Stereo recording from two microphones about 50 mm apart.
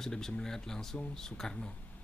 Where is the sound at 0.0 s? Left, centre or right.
Centre.